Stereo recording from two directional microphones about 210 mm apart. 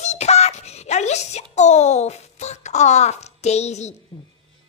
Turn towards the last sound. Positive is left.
turn(degrees=35)  # may be behind; listen again after turning